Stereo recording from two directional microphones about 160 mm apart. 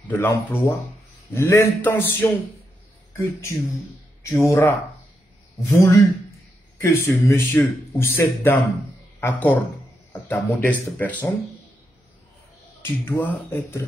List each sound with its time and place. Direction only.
0.2 s speech: 15° left (ahead or behind)
5.8 s a man's voice: 20° left (ahead or behind)
12.8 s speech: 15° left (ahead or behind)